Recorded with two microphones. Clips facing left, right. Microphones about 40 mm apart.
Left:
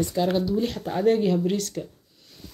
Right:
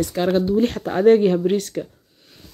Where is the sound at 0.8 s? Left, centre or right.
Right.